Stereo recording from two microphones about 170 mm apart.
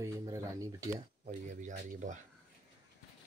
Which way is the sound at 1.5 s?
45° right (ahead or behind).